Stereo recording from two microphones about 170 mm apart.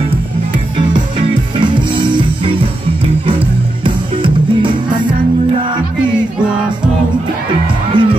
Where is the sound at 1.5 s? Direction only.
30° right (ahead or behind).